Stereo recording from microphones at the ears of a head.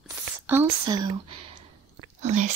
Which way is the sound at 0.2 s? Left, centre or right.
Right.